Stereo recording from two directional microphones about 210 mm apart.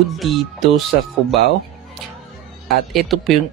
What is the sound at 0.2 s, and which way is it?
Speech, centre (ahead or behind).